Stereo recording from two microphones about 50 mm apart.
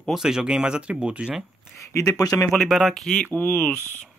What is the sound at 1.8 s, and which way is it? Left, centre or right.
Speech, left.